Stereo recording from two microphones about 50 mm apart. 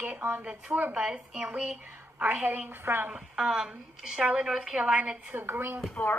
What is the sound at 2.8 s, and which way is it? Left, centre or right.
Speech, right.